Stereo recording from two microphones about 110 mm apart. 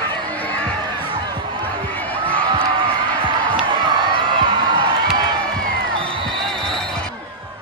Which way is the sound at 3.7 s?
45° right (ahead or behind).